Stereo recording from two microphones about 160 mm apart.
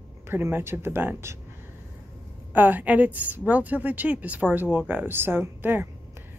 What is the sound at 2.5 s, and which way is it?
Speech, 10° right (ahead or behind).